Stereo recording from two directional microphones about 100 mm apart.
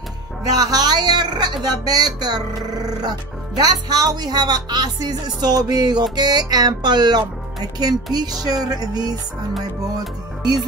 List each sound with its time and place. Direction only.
0.4 s speech: 40° right (ahead or behind)
8.5 s music: 40° right (ahead or behind)